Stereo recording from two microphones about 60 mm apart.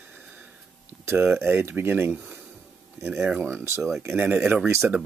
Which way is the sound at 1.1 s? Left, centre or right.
Right.